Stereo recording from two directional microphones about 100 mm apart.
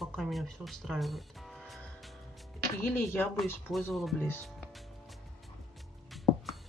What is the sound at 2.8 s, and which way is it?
Speech, 25° left (ahead or behind).